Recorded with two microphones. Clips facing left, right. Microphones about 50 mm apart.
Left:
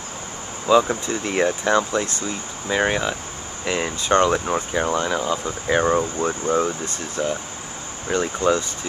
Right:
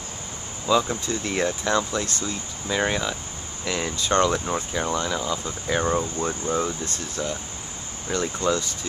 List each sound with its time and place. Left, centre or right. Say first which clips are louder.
0.7 s speech: left 5 dB; left